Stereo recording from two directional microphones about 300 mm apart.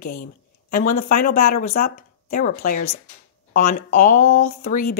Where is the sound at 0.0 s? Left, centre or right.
Left.